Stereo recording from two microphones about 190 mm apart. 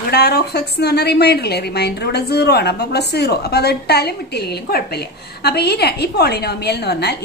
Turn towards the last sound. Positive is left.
turn(degrees=60)  # may be behind; listen again after turning